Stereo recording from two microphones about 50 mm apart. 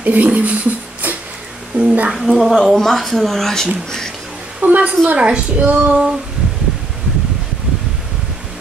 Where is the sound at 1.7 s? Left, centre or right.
Right.